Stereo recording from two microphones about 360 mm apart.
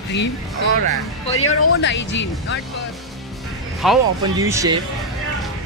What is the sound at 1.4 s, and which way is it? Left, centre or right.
Speech, left.